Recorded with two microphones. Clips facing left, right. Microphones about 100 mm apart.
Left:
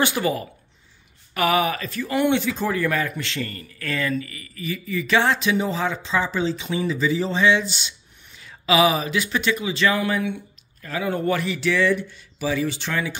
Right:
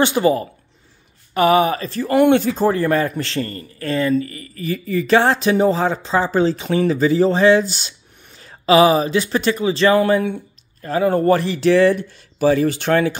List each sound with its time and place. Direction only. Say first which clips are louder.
0.0 s a man's voice: right 6 dB; 30° right (ahead or behind)
2.0 s a man's voice: right 7 dB; 50° right (ahead or behind)